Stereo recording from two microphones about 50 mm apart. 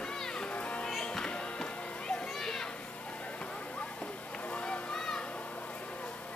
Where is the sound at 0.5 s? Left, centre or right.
Left.